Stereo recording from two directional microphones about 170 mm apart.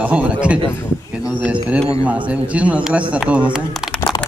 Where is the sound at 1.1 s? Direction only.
5° right (ahead or behind).